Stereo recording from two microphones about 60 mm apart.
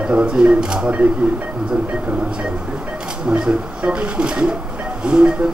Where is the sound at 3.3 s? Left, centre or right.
Centre.